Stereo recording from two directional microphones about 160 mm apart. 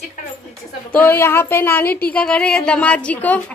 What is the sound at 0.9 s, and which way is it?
Speech, 10° left (ahead or behind).